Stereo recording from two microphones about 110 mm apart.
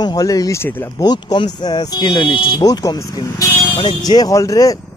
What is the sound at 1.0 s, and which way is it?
Speech, 40° left (ahead or behind).